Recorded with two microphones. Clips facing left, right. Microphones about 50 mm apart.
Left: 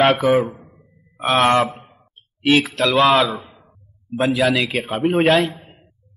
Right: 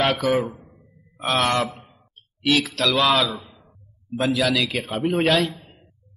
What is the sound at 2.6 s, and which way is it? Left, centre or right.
Speech, left.